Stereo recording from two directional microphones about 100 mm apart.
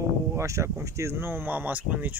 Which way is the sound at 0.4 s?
30° right (ahead or behind).